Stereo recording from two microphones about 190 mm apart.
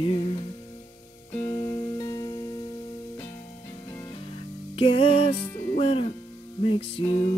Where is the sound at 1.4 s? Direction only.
30° left (ahead or behind).